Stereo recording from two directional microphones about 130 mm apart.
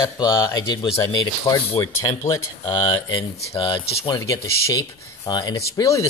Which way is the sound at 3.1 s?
40° left (ahead or behind).